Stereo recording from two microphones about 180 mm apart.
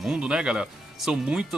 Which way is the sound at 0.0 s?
5° right (ahead or behind).